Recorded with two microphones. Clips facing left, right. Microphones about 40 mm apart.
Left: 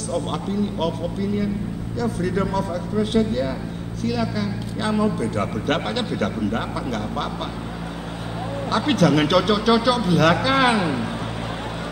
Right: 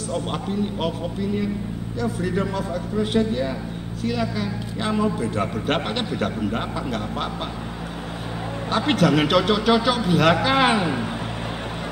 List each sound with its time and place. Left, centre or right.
0.1 s a man's voice: centre
3.0 s a man's voice: centre
8.6 s a man's voice: centre